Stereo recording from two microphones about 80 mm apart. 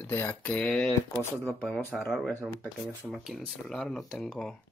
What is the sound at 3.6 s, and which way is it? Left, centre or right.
Speech, centre.